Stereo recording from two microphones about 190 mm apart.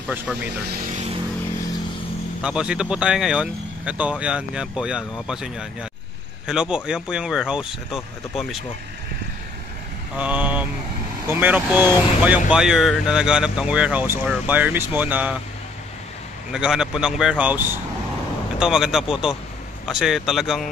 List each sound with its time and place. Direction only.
0.7 s vehicle: 45° right (ahead or behind)
2.4 s speech: 5° right (ahead or behind)
10.1 s speech: 5° right (ahead or behind)
16.5 s speech: 5° right (ahead or behind)